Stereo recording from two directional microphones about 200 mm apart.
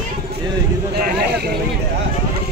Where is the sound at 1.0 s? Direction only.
50° right (ahead or behind).